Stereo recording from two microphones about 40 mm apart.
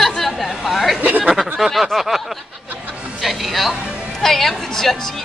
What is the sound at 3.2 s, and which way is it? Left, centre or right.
Music, centre.